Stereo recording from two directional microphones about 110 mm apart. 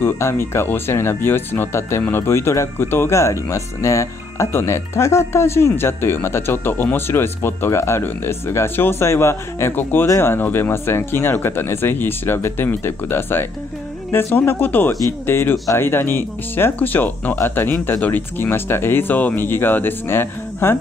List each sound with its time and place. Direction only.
0.0 s speech: 25° left (ahead or behind)